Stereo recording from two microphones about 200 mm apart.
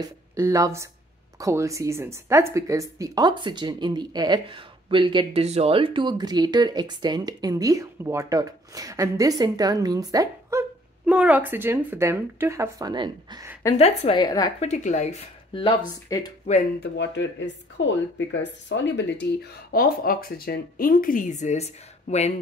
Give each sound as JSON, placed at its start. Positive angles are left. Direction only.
{"t": 0.0, "sound": "speech", "side_deg": -15}
{"t": 11.1, "sound": "speech", "side_deg": -5}
{"t": 13.7, "sound": "a woman's voice", "side_deg": 30}
{"t": 14.6, "sound": "speech", "side_deg": 35}
{"t": 16.1, "sound": "a woman's voice", "side_deg": 20}
{"t": 16.9, "sound": "speech", "side_deg": 60}